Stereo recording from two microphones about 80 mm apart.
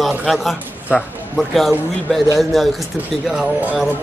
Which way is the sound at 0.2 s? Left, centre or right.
Centre.